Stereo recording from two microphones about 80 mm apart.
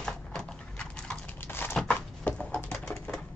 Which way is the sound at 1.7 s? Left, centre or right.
Centre.